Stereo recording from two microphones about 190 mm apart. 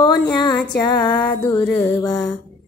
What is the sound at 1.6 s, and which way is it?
Music, 10° left (ahead or behind).